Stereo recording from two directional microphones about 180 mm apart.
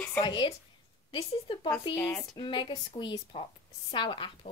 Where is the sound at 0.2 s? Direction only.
25° left (ahead or behind).